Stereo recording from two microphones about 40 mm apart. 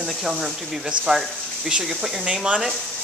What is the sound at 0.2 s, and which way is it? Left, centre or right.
Speech, centre.